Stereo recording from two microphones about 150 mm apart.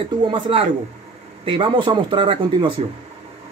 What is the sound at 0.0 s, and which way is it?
Speech, 35° right (ahead or behind).